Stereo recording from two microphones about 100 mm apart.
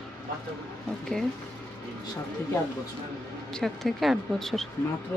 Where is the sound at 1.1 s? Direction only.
10° left (ahead or behind).